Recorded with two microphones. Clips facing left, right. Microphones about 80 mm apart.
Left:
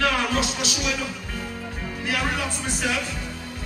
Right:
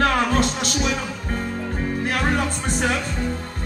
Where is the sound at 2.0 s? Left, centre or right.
Right.